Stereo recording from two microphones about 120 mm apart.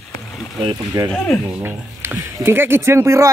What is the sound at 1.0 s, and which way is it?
Speech, 35° right (ahead or behind).